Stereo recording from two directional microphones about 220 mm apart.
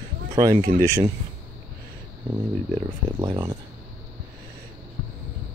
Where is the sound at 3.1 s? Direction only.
15° right (ahead or behind).